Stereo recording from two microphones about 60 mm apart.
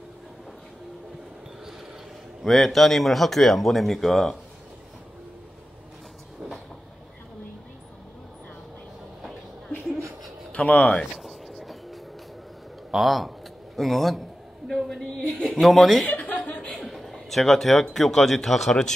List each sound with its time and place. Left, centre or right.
2.4 s speech: centre
10.5 s speech: left
11.1 s music: centre
12.9 s speech: centre
15.3 s a man's voice: centre
15.6 s speech: centre
16.1 s chuckle: left
16.3 s chuckle: centre
17.9 s speech: centre